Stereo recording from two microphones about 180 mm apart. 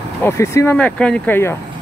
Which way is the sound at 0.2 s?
15° left (ahead or behind).